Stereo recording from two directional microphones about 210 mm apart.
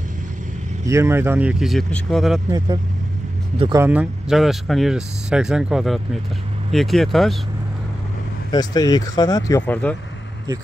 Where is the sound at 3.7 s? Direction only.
5° right (ahead or behind).